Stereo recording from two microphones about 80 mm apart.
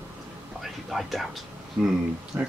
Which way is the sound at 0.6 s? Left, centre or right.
Centre.